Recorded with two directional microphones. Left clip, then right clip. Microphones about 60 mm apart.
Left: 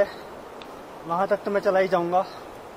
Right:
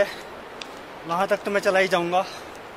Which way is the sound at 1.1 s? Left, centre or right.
Centre.